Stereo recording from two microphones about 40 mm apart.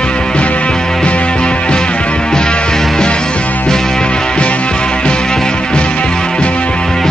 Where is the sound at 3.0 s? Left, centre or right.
Left.